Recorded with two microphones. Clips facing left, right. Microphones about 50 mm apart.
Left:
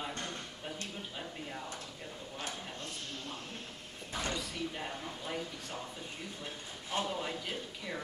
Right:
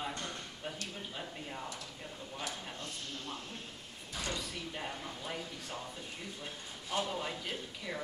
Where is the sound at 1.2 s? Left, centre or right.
Centre.